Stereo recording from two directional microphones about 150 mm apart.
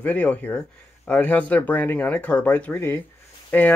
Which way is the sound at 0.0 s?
10° left (ahead or behind).